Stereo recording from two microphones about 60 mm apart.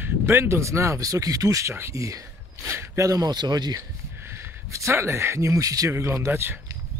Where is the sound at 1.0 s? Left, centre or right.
Right.